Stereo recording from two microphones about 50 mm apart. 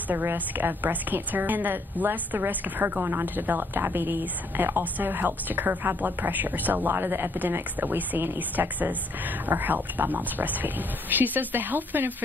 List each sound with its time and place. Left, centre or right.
0.1 s a woman's voice: right
6.9 s a woman's voice: right